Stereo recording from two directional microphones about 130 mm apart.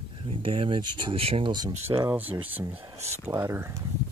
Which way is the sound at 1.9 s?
30° right (ahead or behind).